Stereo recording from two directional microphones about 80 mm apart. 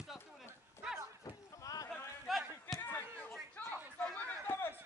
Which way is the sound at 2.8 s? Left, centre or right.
Left.